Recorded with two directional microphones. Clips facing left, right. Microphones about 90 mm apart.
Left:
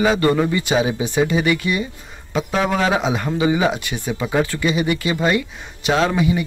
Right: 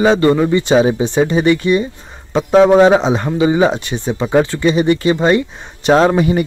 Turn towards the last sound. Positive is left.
turn(degrees=-50)  # may be behind; listen again after turning